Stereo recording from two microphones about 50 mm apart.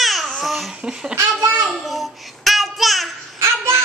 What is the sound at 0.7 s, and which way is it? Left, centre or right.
Speech, centre.